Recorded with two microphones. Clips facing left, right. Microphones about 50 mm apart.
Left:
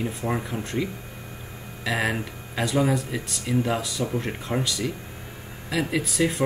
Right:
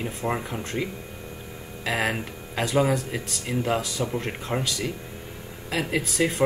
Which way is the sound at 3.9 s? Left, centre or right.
Centre.